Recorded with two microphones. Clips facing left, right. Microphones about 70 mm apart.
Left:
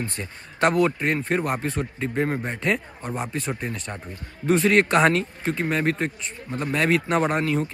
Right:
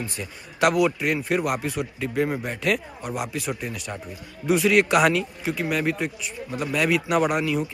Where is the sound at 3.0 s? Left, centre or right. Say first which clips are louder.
Even; centre.